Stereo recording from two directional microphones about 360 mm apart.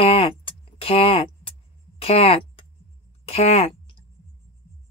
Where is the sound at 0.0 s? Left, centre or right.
Centre.